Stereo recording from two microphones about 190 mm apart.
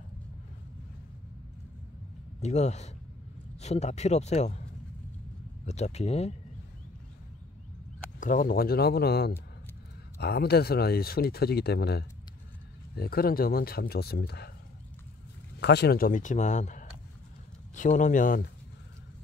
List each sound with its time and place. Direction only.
2.4 s speech: 35° left (ahead or behind)
5.7 s speech: 35° left (ahead or behind)
8.2 s speech: 45° left (ahead or behind)
15.6 s speech: 60° left (ahead or behind)